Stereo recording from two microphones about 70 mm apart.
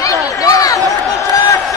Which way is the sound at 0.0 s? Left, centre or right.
Left.